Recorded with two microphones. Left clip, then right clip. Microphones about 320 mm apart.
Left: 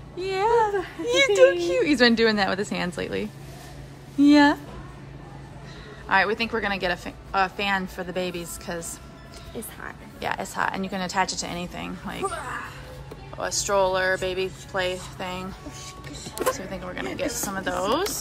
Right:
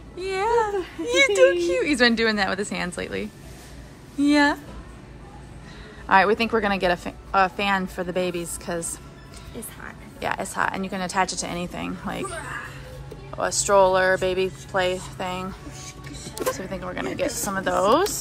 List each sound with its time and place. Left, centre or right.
0.2 s speech: centre
6.0 s a woman's voice: centre
10.2 s a woman's voice: centre
13.4 s a woman's voice: centre
15.8 s music: centre
16.4 s a woman's voice: centre